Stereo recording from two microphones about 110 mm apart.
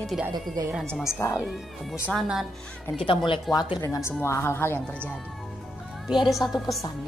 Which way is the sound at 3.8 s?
25° left (ahead or behind).